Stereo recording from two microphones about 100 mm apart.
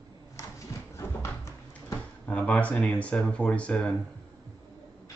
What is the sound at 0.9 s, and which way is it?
Horse, 25° left (ahead or behind).